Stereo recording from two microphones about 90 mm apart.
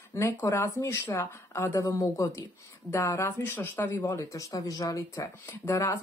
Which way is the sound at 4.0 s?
35° left (ahead or behind).